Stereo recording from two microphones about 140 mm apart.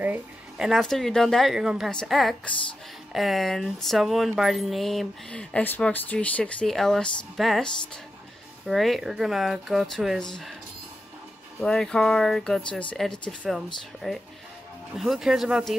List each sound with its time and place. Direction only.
0.0 s speech: 15° right (ahead or behind)
0.7 s speech: centre (ahead or behind)
11.6 s speech: 5° left (ahead or behind)